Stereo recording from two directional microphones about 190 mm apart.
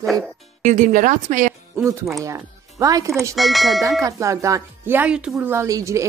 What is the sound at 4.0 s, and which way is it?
A woman's voice, 15° right (ahead or behind).